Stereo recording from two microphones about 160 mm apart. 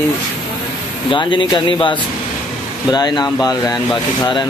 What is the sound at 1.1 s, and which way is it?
Speech, 30° left (ahead or behind).